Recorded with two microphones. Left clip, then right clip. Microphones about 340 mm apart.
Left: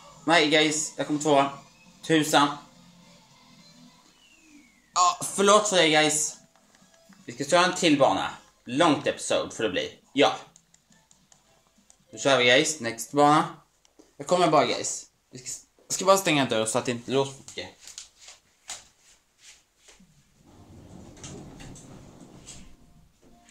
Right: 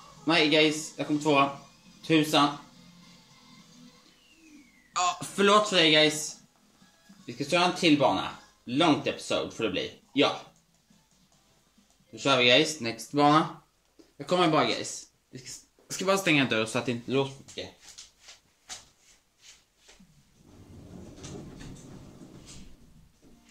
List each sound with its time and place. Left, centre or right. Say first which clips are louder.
0.3 s speech: left 2 dB; left
4.9 s speech: left 5 dB; centre
7.2 s speech: left 4 dB; left
12.1 s speech: left 2 dB; left